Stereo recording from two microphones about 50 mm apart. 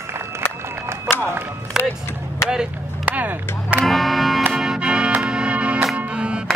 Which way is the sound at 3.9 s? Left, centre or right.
Centre.